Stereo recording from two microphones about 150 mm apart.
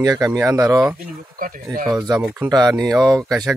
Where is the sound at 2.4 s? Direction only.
25° right (ahead or behind).